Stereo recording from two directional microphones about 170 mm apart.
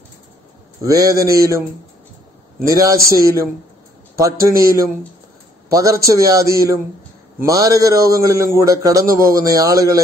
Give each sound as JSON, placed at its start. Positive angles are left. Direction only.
{"t": 0.8, "sound": "a man's voice", "side_deg": -20}
{"t": 2.6, "sound": "a man's voice", "side_deg": -20}